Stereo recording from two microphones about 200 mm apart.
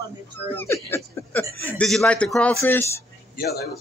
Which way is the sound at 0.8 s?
10° left (ahead or behind).